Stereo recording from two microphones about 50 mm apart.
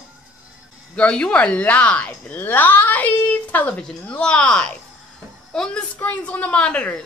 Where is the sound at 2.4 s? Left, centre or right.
Left; by 5.8 s centre.